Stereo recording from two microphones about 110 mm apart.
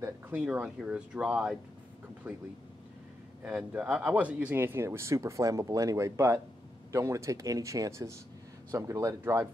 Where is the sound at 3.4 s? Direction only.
15° right (ahead or behind).